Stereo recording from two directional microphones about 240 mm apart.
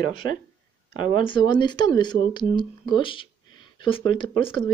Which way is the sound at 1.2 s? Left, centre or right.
Centre.